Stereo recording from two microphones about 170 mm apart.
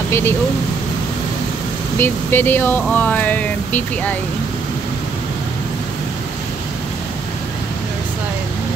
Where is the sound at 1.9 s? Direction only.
15° left (ahead or behind).